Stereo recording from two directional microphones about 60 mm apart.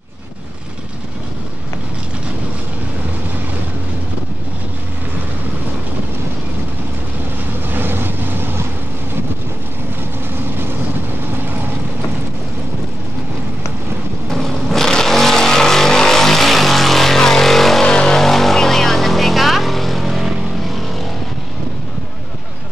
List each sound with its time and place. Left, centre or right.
7.7 s vehicle: right
11.3 s vehicle: right
14.3 s vehicle: centre